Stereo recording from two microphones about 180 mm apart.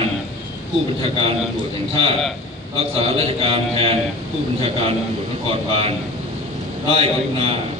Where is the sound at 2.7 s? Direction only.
30° right (ahead or behind).